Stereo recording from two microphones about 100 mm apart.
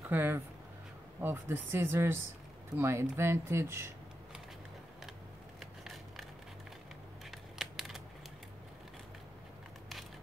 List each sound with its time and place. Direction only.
0.1 s speech: 20° right (ahead or behind)
5.6 s scissors: centre (ahead or behind)
7.2 s a sound: 5° right (ahead or behind)